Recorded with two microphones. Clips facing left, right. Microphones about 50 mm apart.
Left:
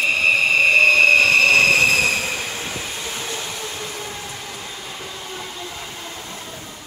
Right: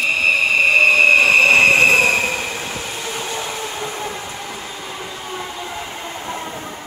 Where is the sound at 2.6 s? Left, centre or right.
Right.